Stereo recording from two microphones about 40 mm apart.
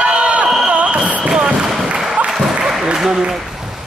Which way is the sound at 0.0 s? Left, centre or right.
Right.